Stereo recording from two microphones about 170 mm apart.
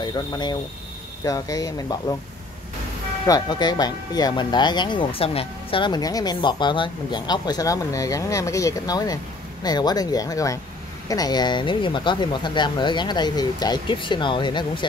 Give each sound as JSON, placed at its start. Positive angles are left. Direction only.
{"t": 0.0, "sound": "speech", "side_deg": 25}
{"t": 3.3, "sound": "speech", "side_deg": 25}